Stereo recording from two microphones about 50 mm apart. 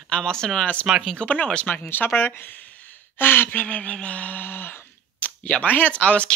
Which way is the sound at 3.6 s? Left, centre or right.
Left.